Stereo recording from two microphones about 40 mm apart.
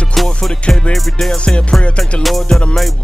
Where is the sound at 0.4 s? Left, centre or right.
Left.